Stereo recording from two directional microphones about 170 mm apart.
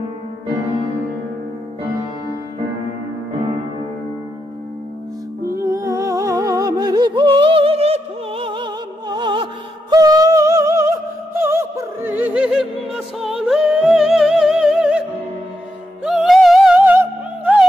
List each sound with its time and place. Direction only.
5.7 s music: 20° right (ahead or behind)